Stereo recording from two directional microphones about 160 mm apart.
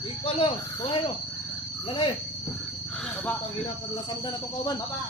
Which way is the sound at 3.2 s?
10° left (ahead or behind).